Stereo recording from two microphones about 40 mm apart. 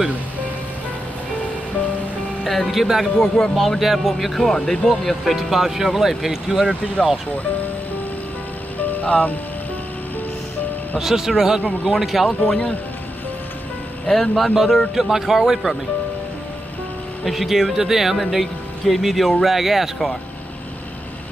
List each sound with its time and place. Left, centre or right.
2.4 s speech: centre
3.2 s speech: centre
3.5 s speech: centre
4.5 s speech: centre
4.8 s speech: centre
8.7 s music: left
11.0 s speech: centre
12.3 s speech: left
14.1 s speech: centre
14.5 s speech: centre
17.2 s speech: centre